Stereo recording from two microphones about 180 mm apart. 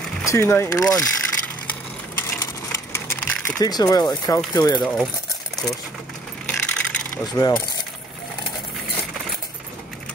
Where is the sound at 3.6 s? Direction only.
20° left (ahead or behind).